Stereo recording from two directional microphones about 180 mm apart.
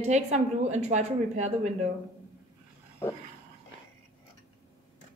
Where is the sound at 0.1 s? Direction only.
40° right (ahead or behind).